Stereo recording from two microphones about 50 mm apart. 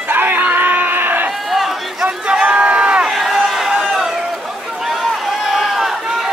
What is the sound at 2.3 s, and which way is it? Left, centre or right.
Crowd, right.